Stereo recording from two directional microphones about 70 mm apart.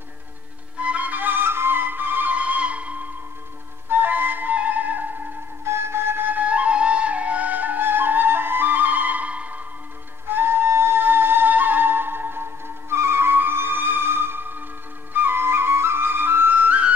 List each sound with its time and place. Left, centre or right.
0.7 s flute: centre
5.7 s flute: right; by 9.6 s centre
10.2 s flute: right